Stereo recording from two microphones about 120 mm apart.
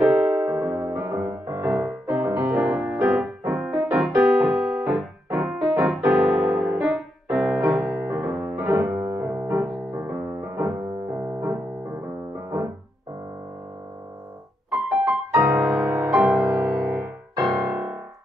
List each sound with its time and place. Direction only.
0.0 s electric piano: 5° right (ahead or behind)
0.9 s music: 20° right (ahead or behind)
1.7 s music: 10° right (ahead or behind)
4.2 s keyboard: centre (ahead or behind)
5.4 s music: 5° right (ahead or behind)
8.0 s music: 20° right (ahead or behind)
8.3 s music: 10° right (ahead or behind)
8.5 s music: 25° right (ahead or behind)
9.0 s piano: 30° right (ahead or behind)
9.3 s music: 15° right (ahead or behind)
11.1 s piano: 15° right (ahead or behind)
14.7 s music: 5° right (ahead or behind)
15.8 s music: 25° right (ahead or behind)
16.1 s music: centre (ahead or behind)